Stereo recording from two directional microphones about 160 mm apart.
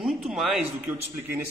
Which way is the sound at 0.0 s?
Centre (ahead or behind).